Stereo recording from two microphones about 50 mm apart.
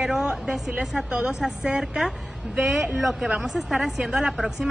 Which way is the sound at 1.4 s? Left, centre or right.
Centre.